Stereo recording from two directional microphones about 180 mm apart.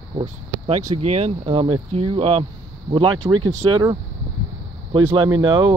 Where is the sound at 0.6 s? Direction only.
35° right (ahead or behind).